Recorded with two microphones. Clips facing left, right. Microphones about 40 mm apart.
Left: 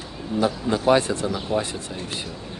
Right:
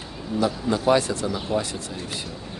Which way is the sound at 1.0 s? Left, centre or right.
Left.